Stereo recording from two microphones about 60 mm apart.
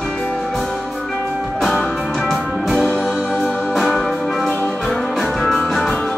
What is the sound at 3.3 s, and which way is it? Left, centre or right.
Music, centre.